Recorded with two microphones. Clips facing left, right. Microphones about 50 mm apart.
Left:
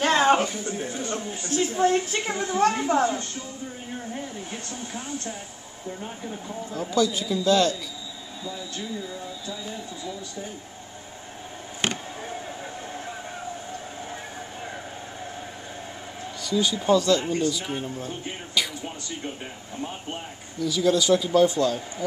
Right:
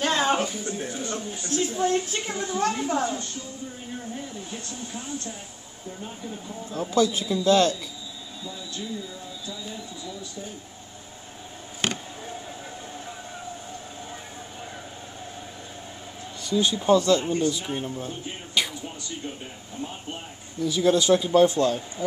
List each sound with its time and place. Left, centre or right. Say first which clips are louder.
0.0 s music: left 4 dB; left
0.4 s a sound: left 1 dB; left
4.5 s speech: left 1 dB; left
6.8 s speech: right 1 dB; right
11.8 s a sound: even; centre
16.4 s speech: right 1 dB; right
20.5 s speech: right 1 dB; right